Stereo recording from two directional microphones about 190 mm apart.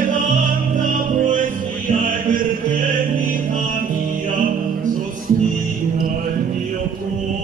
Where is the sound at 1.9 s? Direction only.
45° right (ahead or behind).